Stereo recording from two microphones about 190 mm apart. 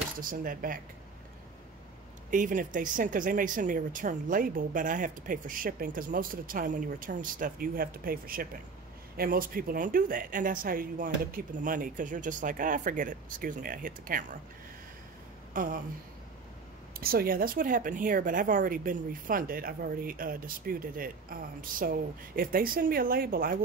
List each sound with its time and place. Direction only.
0.2 s speech: 45° right (ahead or behind)
2.3 s speech: 45° right (ahead or behind)
15.5 s a sound: 45° right (ahead or behind)
16.9 s speech: 50° right (ahead or behind)